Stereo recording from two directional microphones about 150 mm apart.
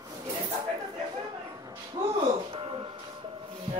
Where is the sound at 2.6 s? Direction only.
35° right (ahead or behind).